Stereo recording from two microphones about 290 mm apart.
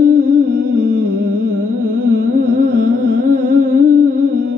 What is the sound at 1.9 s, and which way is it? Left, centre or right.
Music, right.